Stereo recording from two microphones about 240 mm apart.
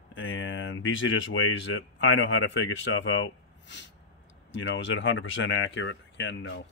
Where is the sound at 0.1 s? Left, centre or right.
Left.